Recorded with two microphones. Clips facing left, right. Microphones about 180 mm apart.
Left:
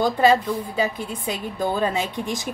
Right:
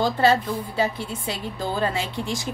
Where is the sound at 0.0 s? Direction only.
15° left (ahead or behind).